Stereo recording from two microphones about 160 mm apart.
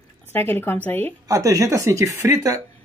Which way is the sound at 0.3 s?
15° left (ahead or behind).